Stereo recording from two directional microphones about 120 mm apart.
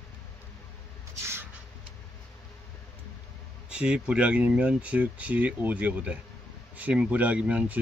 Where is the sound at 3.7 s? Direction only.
10° right (ahead or behind).